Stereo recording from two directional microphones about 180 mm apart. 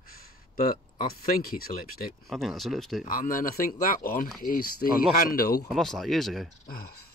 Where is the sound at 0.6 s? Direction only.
55° left (ahead or behind).